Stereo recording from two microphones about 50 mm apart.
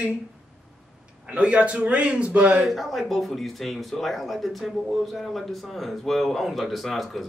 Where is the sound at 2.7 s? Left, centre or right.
Centre.